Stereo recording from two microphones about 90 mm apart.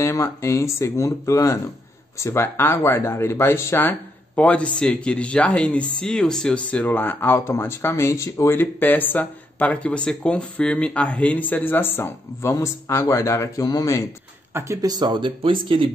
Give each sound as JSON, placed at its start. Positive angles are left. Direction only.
{"t": 0.0, "sound": "speech", "side_deg": 35}
{"t": 4.4, "sound": "speech", "side_deg": 15}
{"t": 12.4, "sound": "speech", "side_deg": 35}
{"t": 14.5, "sound": "speech", "side_deg": -30}
{"t": 14.8, "sound": "speech", "side_deg": -50}